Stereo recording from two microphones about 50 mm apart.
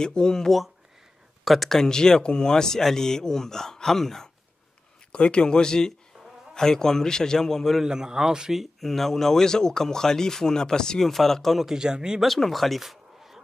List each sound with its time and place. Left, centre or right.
0.0 s speech: centre
5.1 s speech: left
7.8 s a man's voice: centre
8.5 s speech: centre
11.6 s a man's voice: centre
12.4 s speech: centre